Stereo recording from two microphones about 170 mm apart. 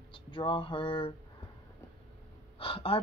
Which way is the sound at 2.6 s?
35° left (ahead or behind).